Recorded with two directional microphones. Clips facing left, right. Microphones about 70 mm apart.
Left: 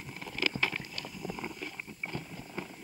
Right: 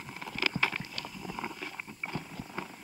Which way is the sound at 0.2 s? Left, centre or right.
Right.